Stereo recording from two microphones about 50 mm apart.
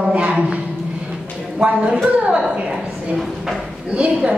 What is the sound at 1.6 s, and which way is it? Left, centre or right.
A woman's voice, right.